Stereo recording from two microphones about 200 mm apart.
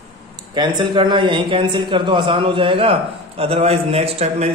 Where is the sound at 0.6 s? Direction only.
25° right (ahead or behind).